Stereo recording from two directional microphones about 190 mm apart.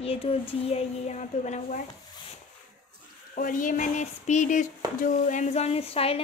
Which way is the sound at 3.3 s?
45° left (ahead or behind).